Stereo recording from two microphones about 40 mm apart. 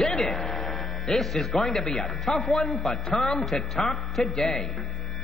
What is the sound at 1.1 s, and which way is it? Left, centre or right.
Speech, centre.